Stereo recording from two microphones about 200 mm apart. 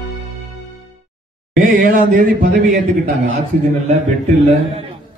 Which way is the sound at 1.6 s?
45° right (ahead or behind).